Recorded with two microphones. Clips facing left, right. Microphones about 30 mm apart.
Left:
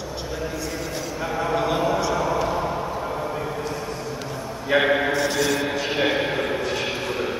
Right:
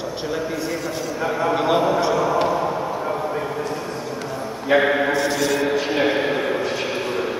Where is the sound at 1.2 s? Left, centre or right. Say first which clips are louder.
Right 3 dB; centre.